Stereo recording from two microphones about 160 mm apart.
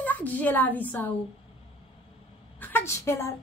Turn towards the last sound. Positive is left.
turn(degrees=15)  # may be behind; listen again after turning